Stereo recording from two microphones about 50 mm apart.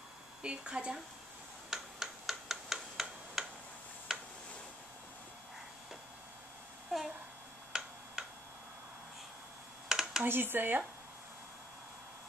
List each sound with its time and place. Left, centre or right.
0.4 s speech: right
1.7 s tick-tock: centre
6.9 s a sound: centre
9.8 s computer keyboard: centre
10.2 s speech: right